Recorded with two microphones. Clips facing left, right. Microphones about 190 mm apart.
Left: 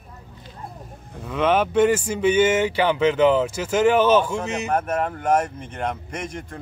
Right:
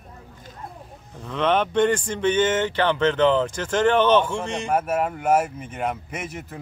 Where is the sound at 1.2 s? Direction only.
5° left (ahead or behind).